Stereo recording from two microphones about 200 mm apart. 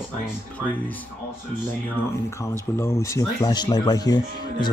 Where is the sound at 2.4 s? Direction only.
15° left (ahead or behind).